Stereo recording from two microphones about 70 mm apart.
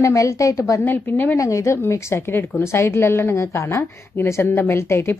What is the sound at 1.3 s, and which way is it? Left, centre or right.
A woman's voice, left.